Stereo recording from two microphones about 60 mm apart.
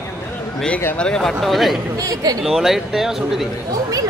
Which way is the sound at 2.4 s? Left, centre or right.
Centre.